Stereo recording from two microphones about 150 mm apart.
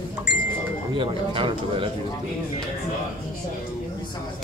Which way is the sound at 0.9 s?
35° right (ahead or behind).